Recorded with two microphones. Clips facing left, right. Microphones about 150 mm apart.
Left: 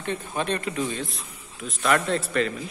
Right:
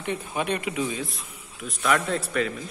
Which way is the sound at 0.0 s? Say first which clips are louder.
Even; 15° right (ahead or behind).